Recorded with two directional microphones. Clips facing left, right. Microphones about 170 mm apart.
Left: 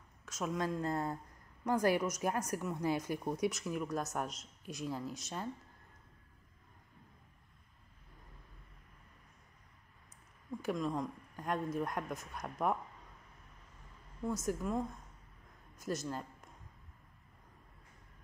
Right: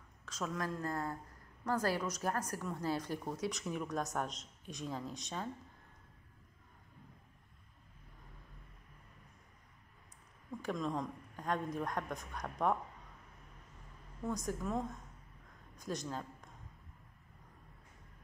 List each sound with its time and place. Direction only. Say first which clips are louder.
0.2 s a woman's voice: left 3 dB; 10° left (ahead or behind)
3.4 s speech: left 3 dB; 5° left (ahead or behind)
10.6 s a woman's voice: left 2 dB; 5° left (ahead or behind)
14.4 s speech: left 3 dB; 5° left (ahead or behind)